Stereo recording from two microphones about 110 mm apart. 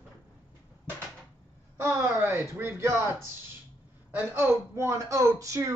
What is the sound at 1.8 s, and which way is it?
A man's voice, 25° right (ahead or behind).